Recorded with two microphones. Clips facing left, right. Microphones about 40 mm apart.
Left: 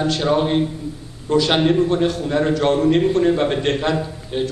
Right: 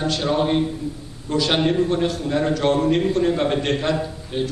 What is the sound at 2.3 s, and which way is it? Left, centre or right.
A man's voice, centre.